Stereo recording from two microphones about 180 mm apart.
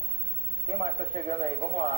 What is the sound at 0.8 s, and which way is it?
Speech, 40° right (ahead or behind).